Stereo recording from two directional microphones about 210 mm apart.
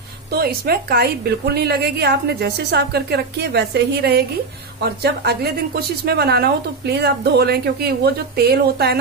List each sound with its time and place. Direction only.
0.3 s a woman's voice: 45° right (ahead or behind)